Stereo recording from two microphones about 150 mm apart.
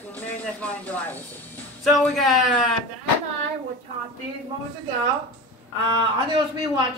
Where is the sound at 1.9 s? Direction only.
Centre (ahead or behind).